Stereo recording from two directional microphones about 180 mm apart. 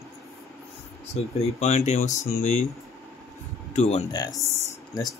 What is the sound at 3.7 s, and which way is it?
Speech, 35° left (ahead or behind).